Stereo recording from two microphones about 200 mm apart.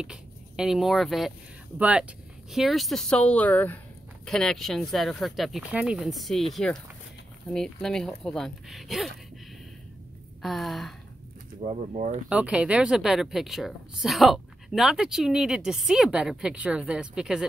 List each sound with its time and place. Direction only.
0.0 s speech: 5° right (ahead or behind)
10.4 s speech: centre (ahead or behind)
11.6 s speech: 35° right (ahead or behind)
12.3 s speech: 5° right (ahead or behind)